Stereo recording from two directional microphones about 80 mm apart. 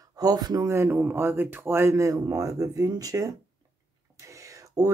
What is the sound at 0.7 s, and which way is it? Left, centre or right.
Speech, right.